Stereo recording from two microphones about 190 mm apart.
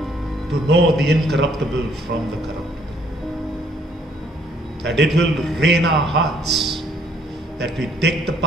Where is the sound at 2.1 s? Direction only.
60° right (ahead or behind).